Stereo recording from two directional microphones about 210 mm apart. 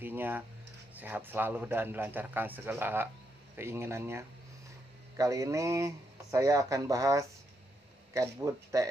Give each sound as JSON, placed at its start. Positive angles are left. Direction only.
{"t": 0.0, "sound": "a man's voice", "side_deg": -10}